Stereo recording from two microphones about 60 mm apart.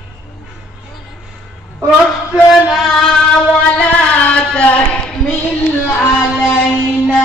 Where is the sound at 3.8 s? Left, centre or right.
Centre.